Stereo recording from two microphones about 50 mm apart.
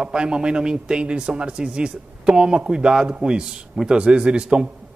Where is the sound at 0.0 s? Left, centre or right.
Centre.